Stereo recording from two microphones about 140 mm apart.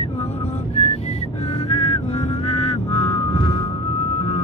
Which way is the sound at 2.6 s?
45° left (ahead or behind).